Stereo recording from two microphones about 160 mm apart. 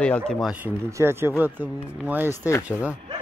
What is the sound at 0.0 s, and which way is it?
Speech, 5° left (ahead or behind).